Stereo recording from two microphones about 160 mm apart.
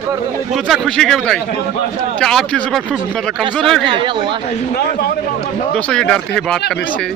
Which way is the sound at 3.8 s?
30° right (ahead or behind).